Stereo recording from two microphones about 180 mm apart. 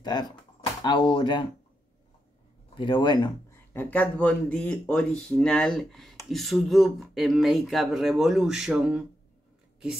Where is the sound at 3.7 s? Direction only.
10° left (ahead or behind).